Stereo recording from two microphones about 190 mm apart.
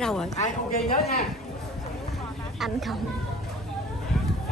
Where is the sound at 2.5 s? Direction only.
Centre (ahead or behind).